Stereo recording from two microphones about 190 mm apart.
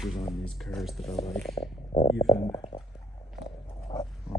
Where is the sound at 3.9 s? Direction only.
20° left (ahead or behind).